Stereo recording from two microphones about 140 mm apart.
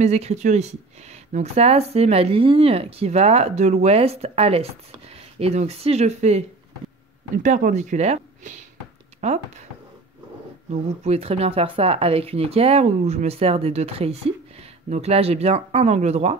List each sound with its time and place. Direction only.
0.0 s speech: 50° right (ahead or behind)
7.3 s speech: 70° right (ahead or behind); by 9.7 s 50° right (ahead or behind)
10.7 s speech: 45° right (ahead or behind)